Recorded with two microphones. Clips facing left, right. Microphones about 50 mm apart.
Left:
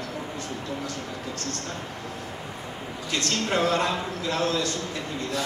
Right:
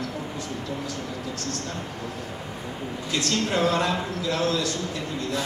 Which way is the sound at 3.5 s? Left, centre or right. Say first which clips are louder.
Left 1 dB; left.